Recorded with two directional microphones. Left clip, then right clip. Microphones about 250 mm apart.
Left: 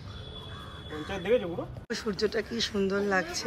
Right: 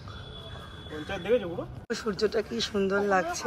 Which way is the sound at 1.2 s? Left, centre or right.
Left.